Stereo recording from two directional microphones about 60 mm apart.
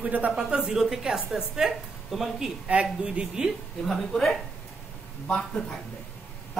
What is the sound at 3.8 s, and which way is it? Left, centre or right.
Speech, centre.